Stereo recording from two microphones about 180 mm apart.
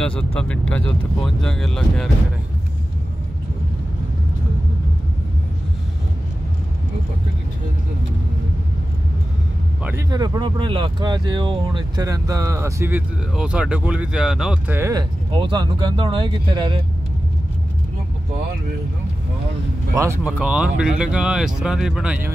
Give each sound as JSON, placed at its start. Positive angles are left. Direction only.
{"t": 0.0, "sound": "speech", "side_deg": 5}
{"t": 9.8, "sound": "speech", "side_deg": -20}
{"t": 20.0, "sound": "speech", "side_deg": -10}